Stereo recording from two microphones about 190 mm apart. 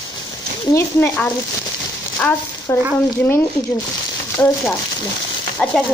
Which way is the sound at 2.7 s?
15° left (ahead or behind).